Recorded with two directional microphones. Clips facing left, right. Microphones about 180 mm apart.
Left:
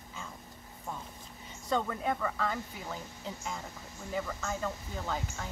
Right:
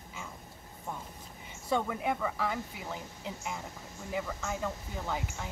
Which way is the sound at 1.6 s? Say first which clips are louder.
Right 1 dB; 10° right (ahead or behind).